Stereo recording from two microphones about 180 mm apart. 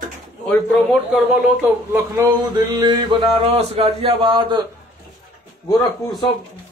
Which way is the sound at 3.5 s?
35° right (ahead or behind).